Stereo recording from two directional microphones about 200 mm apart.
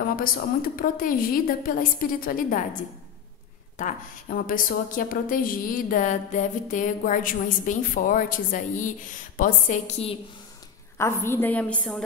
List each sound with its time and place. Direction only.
0.1 s a woman's voice: 45° left (ahead or behind)
3.7 s a woman's voice: 40° left (ahead or behind)
11.0 s a woman's voice: 15° left (ahead or behind)